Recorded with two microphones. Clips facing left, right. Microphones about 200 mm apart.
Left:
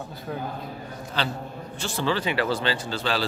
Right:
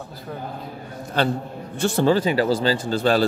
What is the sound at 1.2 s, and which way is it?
A man's voice, 50° right (ahead or behind).